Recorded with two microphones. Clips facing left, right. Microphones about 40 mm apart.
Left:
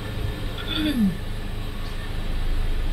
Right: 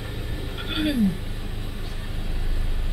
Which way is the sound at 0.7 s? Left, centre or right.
Centre.